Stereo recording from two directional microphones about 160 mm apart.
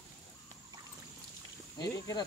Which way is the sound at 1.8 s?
25° left (ahead or behind).